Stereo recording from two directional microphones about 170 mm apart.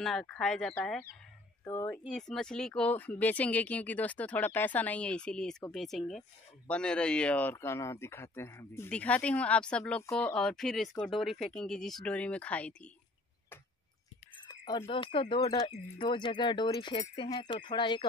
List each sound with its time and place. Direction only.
0.0 s speech: centre (ahead or behind)
1.6 s speech: 15° left (ahead or behind)
14.7 s speech: 25° left (ahead or behind)